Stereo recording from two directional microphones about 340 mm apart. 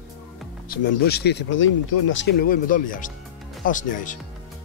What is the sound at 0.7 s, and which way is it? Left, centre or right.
Speech, left.